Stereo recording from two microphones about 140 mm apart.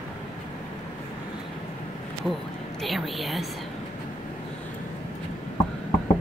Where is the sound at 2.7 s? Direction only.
Centre (ahead or behind).